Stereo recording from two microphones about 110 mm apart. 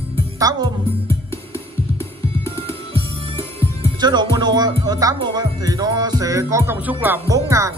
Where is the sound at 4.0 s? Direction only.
40° right (ahead or behind).